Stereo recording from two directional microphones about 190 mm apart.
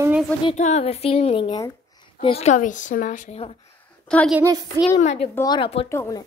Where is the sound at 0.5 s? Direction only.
35° left (ahead or behind).